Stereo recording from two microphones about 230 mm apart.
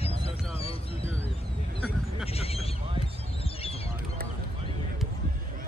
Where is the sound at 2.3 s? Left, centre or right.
Left.